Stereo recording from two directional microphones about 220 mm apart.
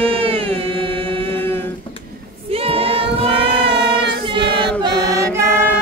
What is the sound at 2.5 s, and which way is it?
Female singing, 25° right (ahead or behind).